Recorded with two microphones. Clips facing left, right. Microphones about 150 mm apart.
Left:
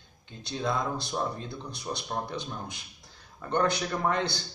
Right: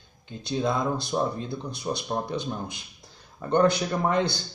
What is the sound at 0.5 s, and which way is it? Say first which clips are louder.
Speech: right 4 dB; 15° right (ahead or behind).